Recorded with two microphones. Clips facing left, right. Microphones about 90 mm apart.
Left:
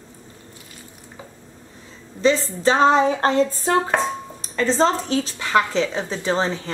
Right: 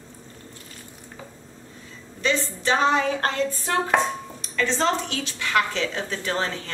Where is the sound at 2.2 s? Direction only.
30° left (ahead or behind).